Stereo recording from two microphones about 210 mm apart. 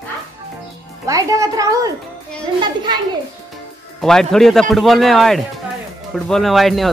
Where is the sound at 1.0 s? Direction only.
15° right (ahead or behind).